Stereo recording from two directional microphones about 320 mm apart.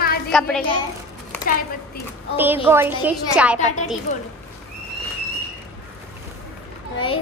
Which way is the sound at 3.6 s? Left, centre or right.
Left.